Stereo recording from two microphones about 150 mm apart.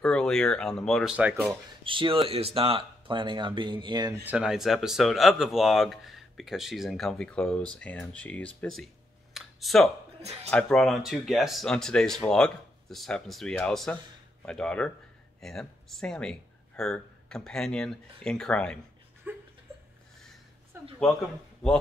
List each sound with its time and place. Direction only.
0.0 s speech: 5° left (ahead or behind)
1.1 s speech: 10° right (ahead or behind)
1.9 s speech: 35° right (ahead or behind)
4.1 s speech: 10° right (ahead or behind); by 18.8 s 5° left (ahead or behind)
19.2 s a sound: 15° right (ahead or behind)
20.7 s speech: 15° right (ahead or behind)
21.6 s speech: 5° left (ahead or behind)